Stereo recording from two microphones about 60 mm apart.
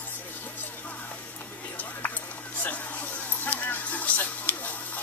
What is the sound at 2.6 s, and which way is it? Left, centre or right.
Music, left.